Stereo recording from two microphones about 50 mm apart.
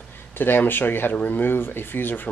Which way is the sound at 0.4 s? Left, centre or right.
Left.